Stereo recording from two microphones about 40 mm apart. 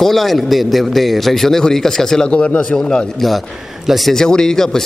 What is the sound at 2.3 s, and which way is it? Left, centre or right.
Speech, left.